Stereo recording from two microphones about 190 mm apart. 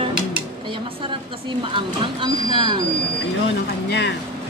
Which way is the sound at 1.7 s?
25° right (ahead or behind).